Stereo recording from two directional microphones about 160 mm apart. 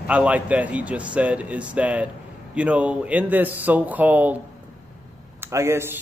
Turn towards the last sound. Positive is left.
turn(degrees=-15)  # may be behind; listen again after turning